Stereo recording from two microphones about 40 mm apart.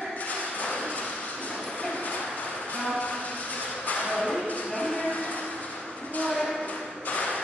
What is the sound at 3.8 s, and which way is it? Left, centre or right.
Music, left.